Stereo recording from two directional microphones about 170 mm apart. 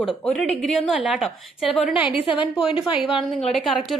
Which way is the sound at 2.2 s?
30° left (ahead or behind).